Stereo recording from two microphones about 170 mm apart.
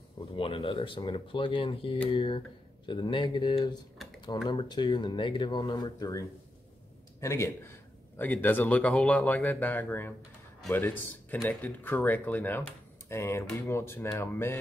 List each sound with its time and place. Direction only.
0.4 s speech: 35° left (ahead or behind); by 14.6 s 15° left (ahead or behind)